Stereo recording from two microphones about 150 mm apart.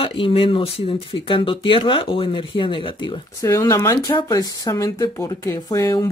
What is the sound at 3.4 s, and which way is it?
Speech, 20° left (ahead or behind).